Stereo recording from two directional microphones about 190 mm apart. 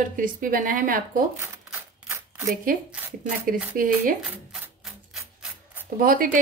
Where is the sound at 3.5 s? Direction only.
50° right (ahead or behind).